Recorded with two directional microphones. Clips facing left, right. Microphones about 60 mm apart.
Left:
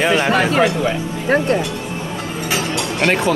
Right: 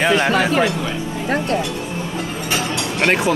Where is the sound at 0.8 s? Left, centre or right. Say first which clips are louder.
Left 3 dB; left.